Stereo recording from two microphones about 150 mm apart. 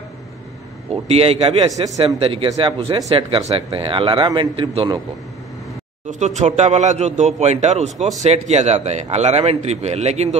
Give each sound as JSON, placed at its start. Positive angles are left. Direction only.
{"t": 0.8, "sound": "a man's voice", "side_deg": -45}
{"t": 6.0, "sound": "a man's voice", "side_deg": -50}